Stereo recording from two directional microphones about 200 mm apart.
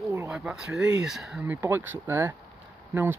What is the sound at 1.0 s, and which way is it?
Speech, centre (ahead or behind).